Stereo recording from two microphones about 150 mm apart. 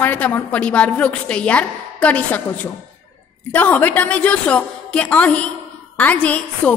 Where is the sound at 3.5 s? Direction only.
10° left (ahead or behind).